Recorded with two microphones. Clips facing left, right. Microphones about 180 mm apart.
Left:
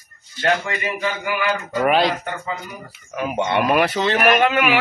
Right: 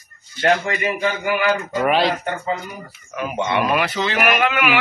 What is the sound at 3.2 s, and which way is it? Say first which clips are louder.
A man's voice: left 1 dB; 45° left (ahead or behind).